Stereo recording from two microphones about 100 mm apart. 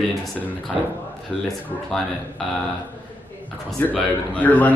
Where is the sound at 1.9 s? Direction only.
Centre (ahead or behind).